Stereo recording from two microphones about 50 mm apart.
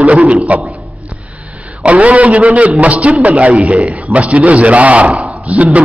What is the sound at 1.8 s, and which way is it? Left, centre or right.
A man's voice, right.